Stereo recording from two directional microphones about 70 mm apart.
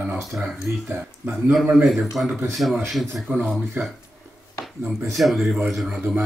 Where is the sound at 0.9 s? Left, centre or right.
Right.